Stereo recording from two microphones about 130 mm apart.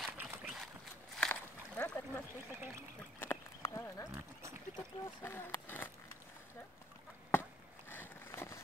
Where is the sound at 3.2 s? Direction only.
20° left (ahead or behind).